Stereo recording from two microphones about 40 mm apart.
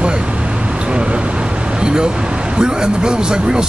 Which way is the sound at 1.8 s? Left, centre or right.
Centre.